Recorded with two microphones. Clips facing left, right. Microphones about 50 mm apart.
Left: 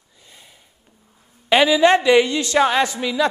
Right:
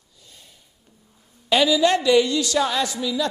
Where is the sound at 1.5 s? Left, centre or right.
Left.